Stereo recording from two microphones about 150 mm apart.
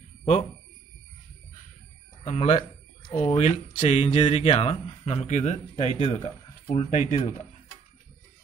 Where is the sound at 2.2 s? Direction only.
50° left (ahead or behind).